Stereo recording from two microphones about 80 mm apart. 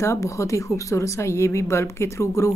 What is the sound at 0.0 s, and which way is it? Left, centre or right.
Speech, left.